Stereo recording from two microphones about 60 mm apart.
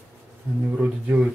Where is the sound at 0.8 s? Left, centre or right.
Right.